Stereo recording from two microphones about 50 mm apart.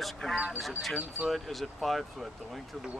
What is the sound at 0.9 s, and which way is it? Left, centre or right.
Speech, right.